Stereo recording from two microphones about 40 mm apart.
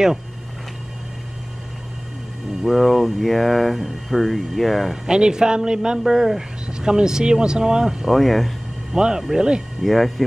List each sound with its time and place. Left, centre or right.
2.6 s speech: centre
5.0 s speech: centre
8.1 s speech: centre
8.9 s speech: centre
9.8 s speech: centre